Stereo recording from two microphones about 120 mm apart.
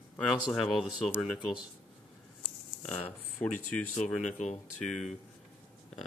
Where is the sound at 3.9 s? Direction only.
85° left.